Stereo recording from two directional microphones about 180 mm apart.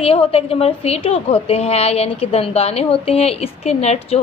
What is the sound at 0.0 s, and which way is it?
A woman's voice, 35° left (ahead or behind).